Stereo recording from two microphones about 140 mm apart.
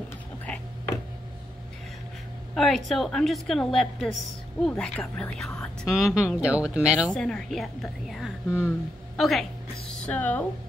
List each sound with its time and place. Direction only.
2.5 s a woman's voice: centre (ahead or behind)
7.1 s a woman's voice: 5° left (ahead or behind)
8.5 s speech: 15° left (ahead or behind)
9.1 s a woman's voice: centre (ahead or behind)